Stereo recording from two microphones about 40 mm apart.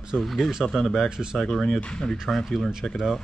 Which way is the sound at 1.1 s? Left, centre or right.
Centre.